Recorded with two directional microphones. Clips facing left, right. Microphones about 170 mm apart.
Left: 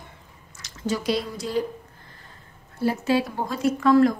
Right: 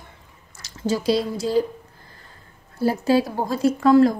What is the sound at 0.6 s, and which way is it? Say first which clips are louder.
Speech: right 4 dB; 30° right (ahead or behind).